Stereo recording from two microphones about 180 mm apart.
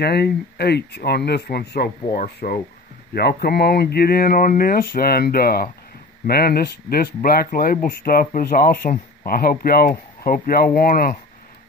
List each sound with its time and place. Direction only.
0.0 s speech: 65° left (ahead or behind)